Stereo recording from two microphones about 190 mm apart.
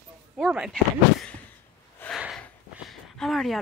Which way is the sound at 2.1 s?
Centre (ahead or behind).